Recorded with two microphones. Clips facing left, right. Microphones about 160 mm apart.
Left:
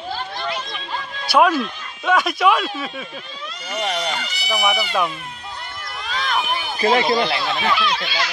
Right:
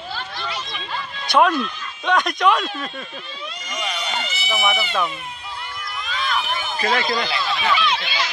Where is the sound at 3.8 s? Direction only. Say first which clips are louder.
Left 4 dB; 50° left (ahead or behind).